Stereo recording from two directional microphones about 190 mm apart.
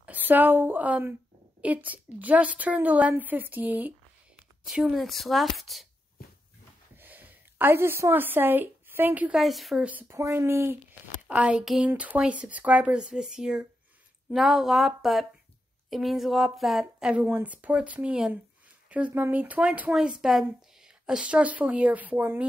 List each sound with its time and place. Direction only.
0.0 s a woman's voice: 10° right (ahead or behind)
7.0 s a woman's voice: 10° right (ahead or behind)